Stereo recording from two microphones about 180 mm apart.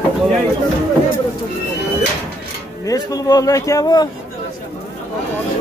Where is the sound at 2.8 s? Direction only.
20° left (ahead or behind).